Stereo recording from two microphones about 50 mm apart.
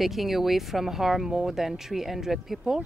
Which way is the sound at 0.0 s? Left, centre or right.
Centre.